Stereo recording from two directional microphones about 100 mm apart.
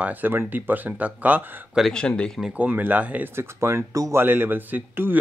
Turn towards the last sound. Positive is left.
turn(degrees=-20)  # may be behind; listen again after turning